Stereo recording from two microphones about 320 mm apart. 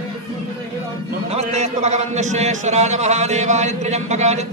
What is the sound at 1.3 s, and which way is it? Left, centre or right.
A man's voice, centre.